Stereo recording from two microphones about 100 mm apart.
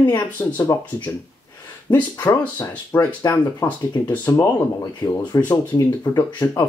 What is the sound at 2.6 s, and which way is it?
Speech, 25° left (ahead or behind).